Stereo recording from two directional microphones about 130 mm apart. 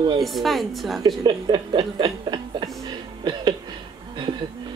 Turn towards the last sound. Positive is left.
turn(degrees=-35)  # may be behind; listen again after turning